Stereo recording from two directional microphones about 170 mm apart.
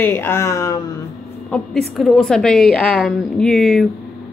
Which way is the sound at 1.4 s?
5° left (ahead or behind).